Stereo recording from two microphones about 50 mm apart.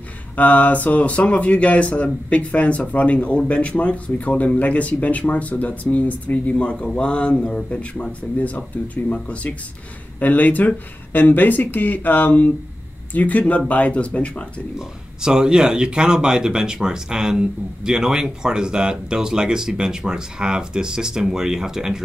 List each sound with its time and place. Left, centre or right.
0.4 s speech: left; by 8.1 s centre
8.4 s speech: left
15.2 s speech: centre